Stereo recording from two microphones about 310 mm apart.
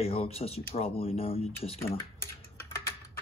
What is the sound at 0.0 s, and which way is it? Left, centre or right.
Speech, centre.